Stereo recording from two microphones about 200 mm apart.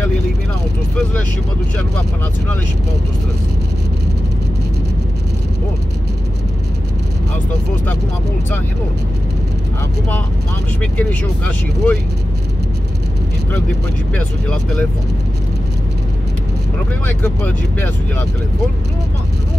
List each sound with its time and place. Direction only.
10.8 s speech: 5° left (ahead or behind)
14.1 s speech: 5° left (ahead or behind)
17.0 s speech: 10° left (ahead or behind)